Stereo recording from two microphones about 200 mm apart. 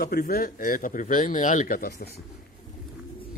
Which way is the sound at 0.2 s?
45° left (ahead or behind).